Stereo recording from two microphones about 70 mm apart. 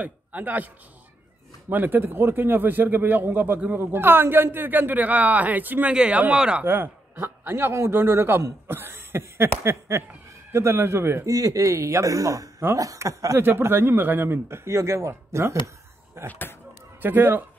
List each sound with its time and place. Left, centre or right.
0.0 s a man's voice: right
1.7 s speech: right
6.6 s speech: right
8.6 s a sound: right
9.6 s speech: right
11.2 s a man's voice: right
13.4 s speech: right
16.3 s speech: left
17.0 s speech: right